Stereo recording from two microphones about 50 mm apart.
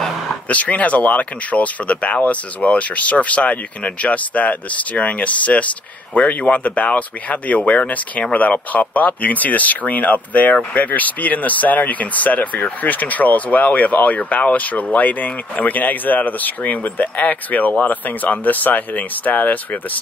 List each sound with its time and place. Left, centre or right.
0.5 s speech: left